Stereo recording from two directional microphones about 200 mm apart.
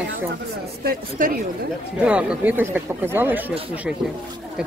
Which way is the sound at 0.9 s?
45° right (ahead or behind).